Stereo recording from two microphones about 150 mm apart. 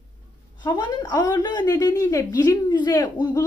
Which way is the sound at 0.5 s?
30° left (ahead or behind).